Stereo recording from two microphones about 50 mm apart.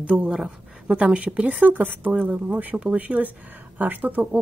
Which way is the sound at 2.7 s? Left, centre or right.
Centre.